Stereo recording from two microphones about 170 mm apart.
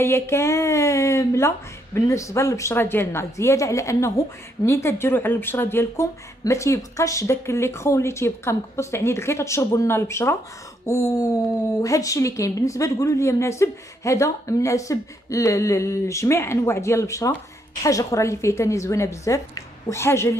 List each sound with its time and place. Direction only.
0.0 s speech: 15° left (ahead or behind)
10.9 s a sound: 20° left (ahead or behind)
11.8 s speech: 20° left (ahead or behind)